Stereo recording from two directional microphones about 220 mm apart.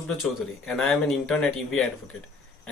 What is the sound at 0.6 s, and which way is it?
Speech, centre (ahead or behind).